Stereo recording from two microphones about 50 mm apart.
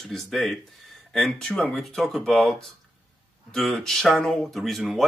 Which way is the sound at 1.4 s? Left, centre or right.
Centre.